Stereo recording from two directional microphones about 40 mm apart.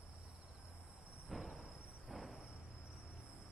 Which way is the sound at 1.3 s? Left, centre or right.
Centre.